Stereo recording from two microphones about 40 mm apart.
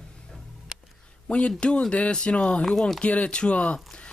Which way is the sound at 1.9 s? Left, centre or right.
Left.